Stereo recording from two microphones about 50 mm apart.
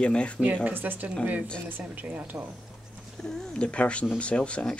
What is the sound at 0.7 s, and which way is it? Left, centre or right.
Speech, right.